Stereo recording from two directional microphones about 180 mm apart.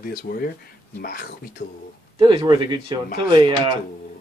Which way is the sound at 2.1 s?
25° right (ahead or behind).